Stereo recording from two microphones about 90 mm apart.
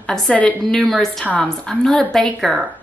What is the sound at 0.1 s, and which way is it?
Speech, 15° left (ahead or behind).